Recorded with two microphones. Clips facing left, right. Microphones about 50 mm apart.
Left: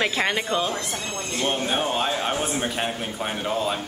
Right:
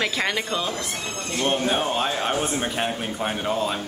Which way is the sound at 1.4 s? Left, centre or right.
Right.